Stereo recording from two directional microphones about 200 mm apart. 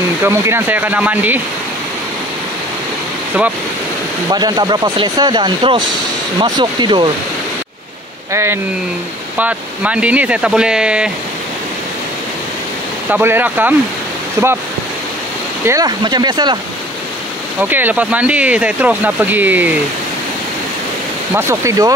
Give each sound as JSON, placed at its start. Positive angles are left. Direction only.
{"t": 0.2, "sound": "speech", "side_deg": -10}
{"t": 4.3, "sound": "speech", "side_deg": -20}
{"t": 8.3, "sound": "speech", "side_deg": -15}
{"t": 13.1, "sound": "speech", "side_deg": -10}
{"t": 15.6, "sound": "speech", "side_deg": -15}
{"t": 17.6, "sound": "speech", "side_deg": -10}
{"t": 21.4, "sound": "speech", "side_deg": -15}